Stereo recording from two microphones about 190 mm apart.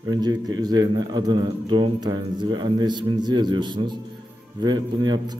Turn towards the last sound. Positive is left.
turn(degrees=-20)  # may be behind; listen again after turning